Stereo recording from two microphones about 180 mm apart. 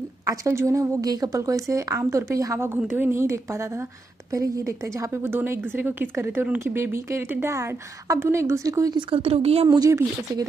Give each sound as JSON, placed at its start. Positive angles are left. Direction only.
{"t": 0.3, "sound": "a woman's voice", "side_deg": -15}
{"t": 9.1, "sound": "a woman's voice", "side_deg": -35}
{"t": 9.8, "sound": "speech", "side_deg": -20}